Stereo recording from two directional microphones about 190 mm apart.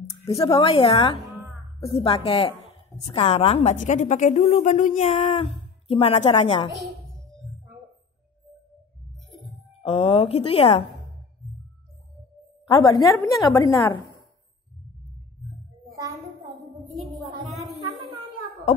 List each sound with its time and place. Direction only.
0.4 s a woman's voice: 20° left (ahead or behind)
9.8 s a woman's voice: 30° left (ahead or behind)
12.6 s a woman's voice: 25° left (ahead or behind)
16.9 s music: centre (ahead or behind)